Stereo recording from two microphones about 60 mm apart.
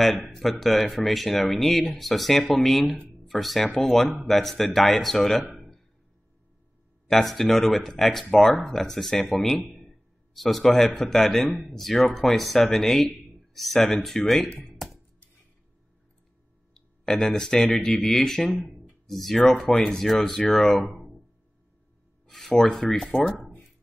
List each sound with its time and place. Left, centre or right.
0.0 s speech: centre
7.1 s speech: centre
14.5 s speech: centre
16.7 s speech: centre
20.8 s a sound: centre
22.2 s speech: centre